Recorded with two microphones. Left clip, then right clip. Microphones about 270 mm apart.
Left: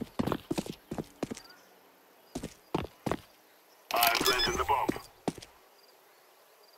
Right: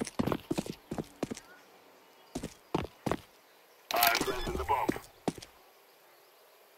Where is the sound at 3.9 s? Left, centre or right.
Centre.